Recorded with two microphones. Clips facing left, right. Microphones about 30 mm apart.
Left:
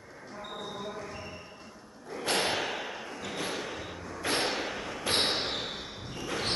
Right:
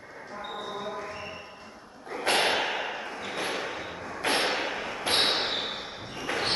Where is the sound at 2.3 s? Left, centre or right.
Right.